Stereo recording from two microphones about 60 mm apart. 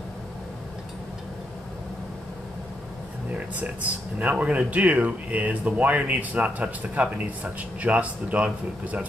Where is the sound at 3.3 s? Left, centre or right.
Right.